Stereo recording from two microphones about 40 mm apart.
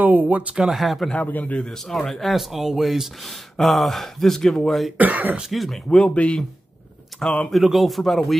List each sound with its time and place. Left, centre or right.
0.0 s speech: right
0.7 s speech: centre
1.1 s a man's voice: left
1.4 s a man's voice: left
1.7 s speech: centre
2.3 s speech: centre
4.9 s speech: right
5.5 s speech: centre
5.9 s a man's voice: left
7.2 s speech: centre
7.5 s speech: centre